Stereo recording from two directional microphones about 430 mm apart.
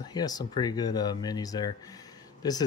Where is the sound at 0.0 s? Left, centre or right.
Centre.